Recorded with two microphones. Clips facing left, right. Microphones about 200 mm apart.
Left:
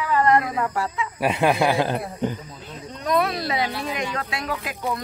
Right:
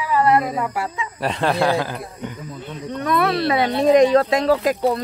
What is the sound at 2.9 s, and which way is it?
Speech, 60° right (ahead or behind).